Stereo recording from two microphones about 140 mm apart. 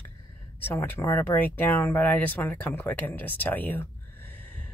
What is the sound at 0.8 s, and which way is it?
Speech, 20° left (ahead or behind).